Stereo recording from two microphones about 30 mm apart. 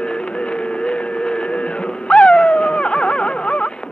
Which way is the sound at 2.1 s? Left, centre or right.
Left.